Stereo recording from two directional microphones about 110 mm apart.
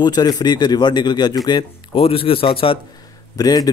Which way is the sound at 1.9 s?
55° left (ahead or behind).